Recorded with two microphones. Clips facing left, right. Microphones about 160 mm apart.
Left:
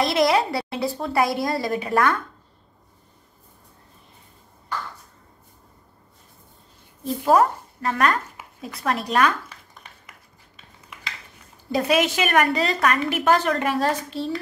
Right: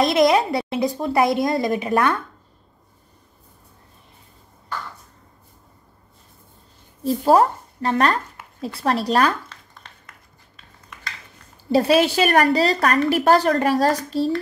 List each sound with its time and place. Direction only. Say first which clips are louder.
0.0 s a woman's voice: right 3 dB; 20° right (ahead or behind)
7.2 s a woman's voice: right 2 dB; 30° right (ahead or behind)
9.5 s a sound: even; 10° left (ahead or behind)
11.7 s a woman's voice: right 4 dB; 30° right (ahead or behind)